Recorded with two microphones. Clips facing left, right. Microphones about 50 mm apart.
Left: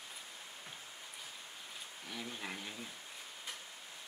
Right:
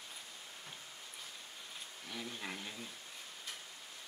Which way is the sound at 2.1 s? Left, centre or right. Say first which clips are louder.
Even; centre.